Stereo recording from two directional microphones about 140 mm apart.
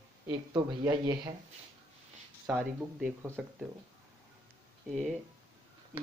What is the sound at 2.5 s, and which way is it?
Speech, 15° right (ahead or behind).